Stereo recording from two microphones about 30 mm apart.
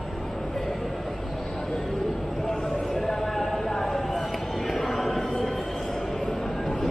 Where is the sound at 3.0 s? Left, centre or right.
Centre.